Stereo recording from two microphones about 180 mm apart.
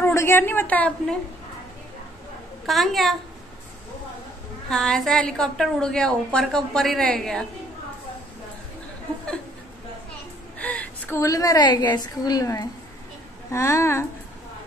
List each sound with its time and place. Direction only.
0.0 s a woman's voice: 15° left (ahead or behind)
2.6 s a woman's voice: centre (ahead or behind)
4.6 s a woman's voice: 5° left (ahead or behind)
10.6 s a woman's voice: 10° left (ahead or behind)